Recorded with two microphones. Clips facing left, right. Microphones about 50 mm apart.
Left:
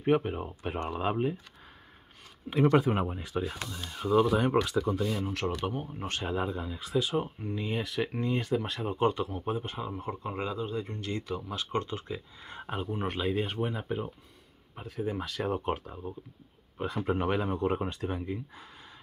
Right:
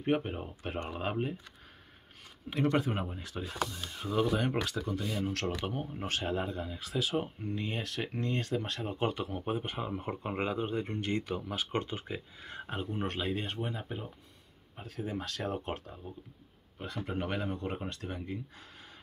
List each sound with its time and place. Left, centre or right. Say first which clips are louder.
0.0 s speech: left 4 dB; centre
2.7 s speech: left 6 dB; left
4.0 s speech: left 5 dB; centre
9.5 s speech: left 1 dB; right
11.1 s speech: right 1 dB; right
11.5 s speech: left 3 dB; centre
12.4 s speech: left 4 dB; centre
13.4 s speech: left 6 dB; left
13.7 s speech: left 5 dB; centre
15.5 s speech: left 5 dB; centre
16.7 s speech: left 7 dB; left